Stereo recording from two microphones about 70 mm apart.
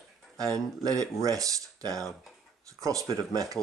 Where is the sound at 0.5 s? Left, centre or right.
Right.